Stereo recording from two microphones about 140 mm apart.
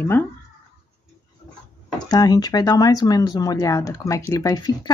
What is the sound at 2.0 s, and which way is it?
Speech, 25° left (ahead or behind).